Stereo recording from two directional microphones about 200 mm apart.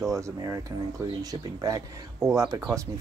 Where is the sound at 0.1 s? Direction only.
15° right (ahead or behind).